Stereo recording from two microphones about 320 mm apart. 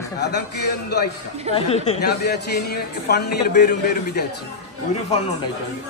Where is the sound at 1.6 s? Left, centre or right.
Centre.